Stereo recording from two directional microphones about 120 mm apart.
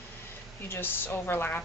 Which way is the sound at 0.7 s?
15° left (ahead or behind).